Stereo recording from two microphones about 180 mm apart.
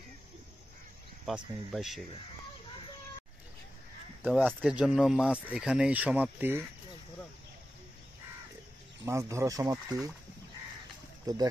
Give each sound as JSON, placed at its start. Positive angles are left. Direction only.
{"t": 1.2, "sound": "speech", "side_deg": 0}
{"t": 4.2, "sound": "speech", "side_deg": -5}
{"t": 9.0, "sound": "speech", "side_deg": -15}